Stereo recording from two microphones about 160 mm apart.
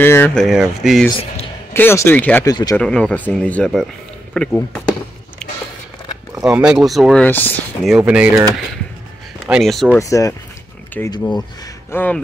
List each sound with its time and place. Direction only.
0.0 s speech: 15° left (ahead or behind)
1.7 s speech: 15° left (ahead or behind)
2.4 s speech: 25° left (ahead or behind)
2.8 s speech: 5° left (ahead or behind)
6.4 s speech: 5° right (ahead or behind)
7.2 s speech: 10° left (ahead or behind)
7.8 s speech: 5° right (ahead or behind)
9.5 s speech: centre (ahead or behind)
9.9 s speech: 20° left (ahead or behind)